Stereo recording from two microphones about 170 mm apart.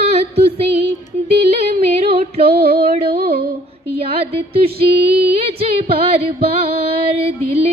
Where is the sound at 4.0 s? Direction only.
35° right (ahead or behind).